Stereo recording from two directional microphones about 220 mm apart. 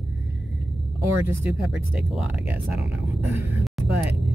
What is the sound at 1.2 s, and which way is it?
Speech, 5° right (ahead or behind).